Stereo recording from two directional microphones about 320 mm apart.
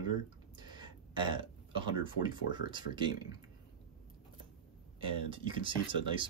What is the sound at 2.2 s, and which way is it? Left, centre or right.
Speech, centre.